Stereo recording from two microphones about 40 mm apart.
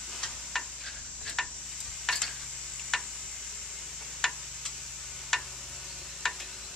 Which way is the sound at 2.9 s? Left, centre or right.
Centre.